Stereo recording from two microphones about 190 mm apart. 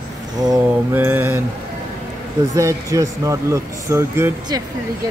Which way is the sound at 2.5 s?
15° right (ahead or behind).